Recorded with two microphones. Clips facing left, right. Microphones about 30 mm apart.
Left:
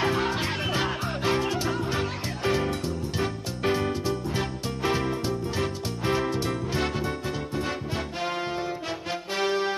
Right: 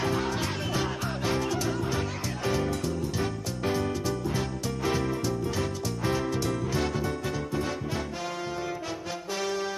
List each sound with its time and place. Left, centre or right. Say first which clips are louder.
0.0 s music: left 3 dB; left
9.4 s music: left 6 dB; left